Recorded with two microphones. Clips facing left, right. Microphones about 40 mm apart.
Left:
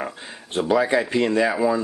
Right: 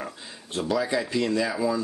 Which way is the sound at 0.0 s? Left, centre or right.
Left.